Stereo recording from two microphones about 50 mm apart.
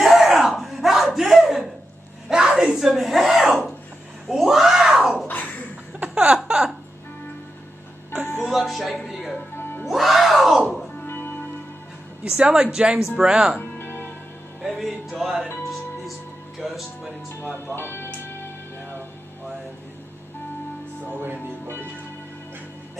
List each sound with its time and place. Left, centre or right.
0.0 s crowd: centre
2.2 s a sound: centre
2.9 s a sound: centre
3.3 s throat clearing: centre
4.4 s a sound: centre
6.1 s a sound: centre
8.5 s music: centre
11.1 s music: left
12.3 s speech: centre
13.6 s music: left
14.6 s music: centre
16.5 s music: centre
17.7 s music: left